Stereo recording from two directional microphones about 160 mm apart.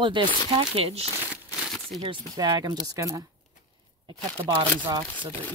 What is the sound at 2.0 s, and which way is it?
Speech, 25° right (ahead or behind).